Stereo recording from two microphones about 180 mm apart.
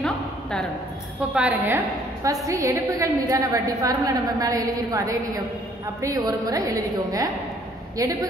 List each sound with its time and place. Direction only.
0.0 s a sound: 5° left (ahead or behind)
1.3 s a woman's voice: 5° right (ahead or behind)
2.2 s a woman's voice: 20° right (ahead or behind)